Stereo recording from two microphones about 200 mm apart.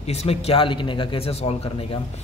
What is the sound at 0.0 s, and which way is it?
A man's voice, 30° left (ahead or behind).